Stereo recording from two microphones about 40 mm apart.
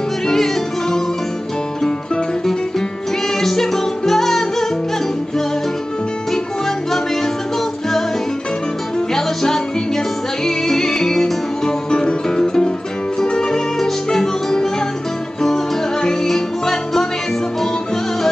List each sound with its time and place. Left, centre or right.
0.3 s music: centre
3.3 s music: centre
9.1 s music: centre